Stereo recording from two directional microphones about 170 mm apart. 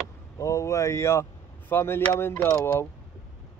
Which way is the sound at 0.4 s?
15° left (ahead or behind).